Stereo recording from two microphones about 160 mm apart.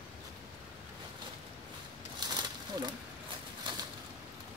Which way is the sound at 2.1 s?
25° right (ahead or behind).